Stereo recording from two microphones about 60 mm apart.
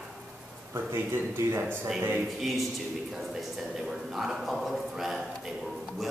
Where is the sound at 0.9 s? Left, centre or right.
Right.